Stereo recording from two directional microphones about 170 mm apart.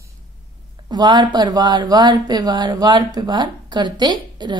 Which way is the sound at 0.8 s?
25° right (ahead or behind).